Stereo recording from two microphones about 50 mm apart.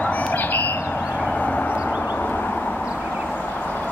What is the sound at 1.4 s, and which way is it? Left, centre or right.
Vehicle, left.